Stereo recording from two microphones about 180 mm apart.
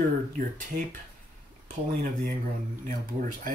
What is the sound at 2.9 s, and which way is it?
Speech, 50° right (ahead or behind).